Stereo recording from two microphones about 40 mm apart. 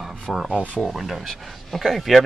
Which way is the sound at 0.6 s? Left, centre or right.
Right.